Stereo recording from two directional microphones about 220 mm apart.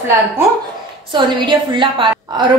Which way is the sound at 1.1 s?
20° right (ahead or behind).